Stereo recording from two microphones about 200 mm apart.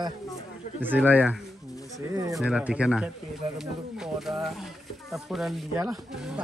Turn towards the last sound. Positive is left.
turn(degrees=0)  # may be behind; listen again after turning